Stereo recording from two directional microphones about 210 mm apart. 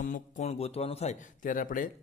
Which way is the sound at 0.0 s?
35° left (ahead or behind).